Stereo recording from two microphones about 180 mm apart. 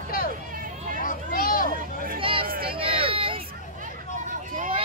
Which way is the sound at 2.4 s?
55° right (ahead or behind).